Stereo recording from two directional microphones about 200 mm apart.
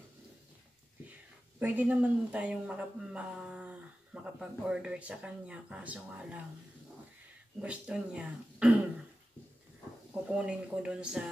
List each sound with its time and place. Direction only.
1.6 s speech: 10° right (ahead or behind)
7.6 s speech: 5° right (ahead or behind)
10.2 s speech: 5° right (ahead or behind)